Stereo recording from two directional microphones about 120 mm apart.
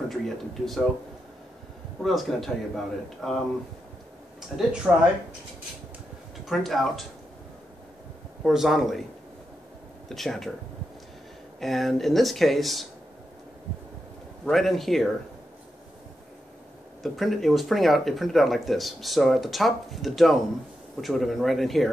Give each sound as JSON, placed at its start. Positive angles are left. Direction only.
{"t": 0.1, "sound": "speech", "side_deg": 0}
{"t": 2.0, "sound": "speech", "side_deg": 0}
{"t": 4.5, "sound": "speech", "side_deg": 5}
{"t": 6.4, "sound": "speech", "side_deg": 0}
{"t": 8.5, "sound": "speech", "side_deg": 0}
{"t": 10.0, "sound": "speech", "side_deg": 0}
{"t": 11.6, "sound": "speech", "side_deg": 0}
{"t": 14.4, "sound": "speech", "side_deg": 5}
{"t": 17.0, "sound": "speech", "side_deg": 0}